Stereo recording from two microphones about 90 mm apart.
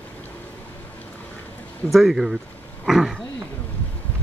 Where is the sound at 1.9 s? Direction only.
5° right (ahead or behind).